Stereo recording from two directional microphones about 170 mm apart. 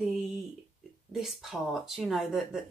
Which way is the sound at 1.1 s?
Centre (ahead or behind).